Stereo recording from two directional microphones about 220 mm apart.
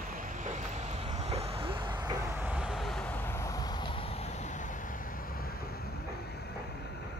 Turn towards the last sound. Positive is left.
turn(degrees=45)  # may be behind; listen again after turning